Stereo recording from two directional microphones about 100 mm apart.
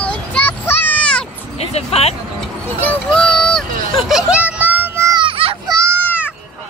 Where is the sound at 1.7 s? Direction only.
90° left.